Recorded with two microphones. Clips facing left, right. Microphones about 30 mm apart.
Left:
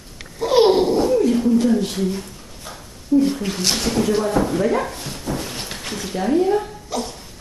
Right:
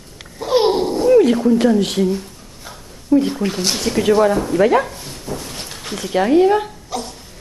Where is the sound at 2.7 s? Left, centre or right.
Centre.